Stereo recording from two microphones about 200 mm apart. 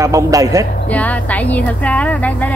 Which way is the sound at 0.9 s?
5° left (ahead or behind).